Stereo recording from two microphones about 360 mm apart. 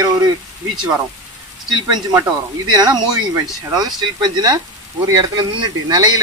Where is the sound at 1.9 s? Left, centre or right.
Centre.